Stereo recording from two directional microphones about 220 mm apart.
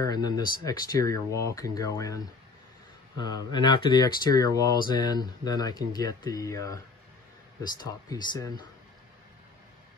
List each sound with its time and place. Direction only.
0.0 s speech: 15° left (ahead or behind)
7.8 s speech: 20° left (ahead or behind)